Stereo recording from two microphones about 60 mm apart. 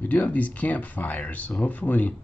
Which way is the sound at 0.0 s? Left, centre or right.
Left.